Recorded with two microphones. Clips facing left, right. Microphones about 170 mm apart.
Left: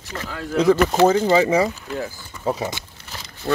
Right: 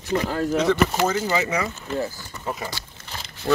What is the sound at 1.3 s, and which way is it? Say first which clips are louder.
Speech: left 7 dB; 30° left (ahead or behind).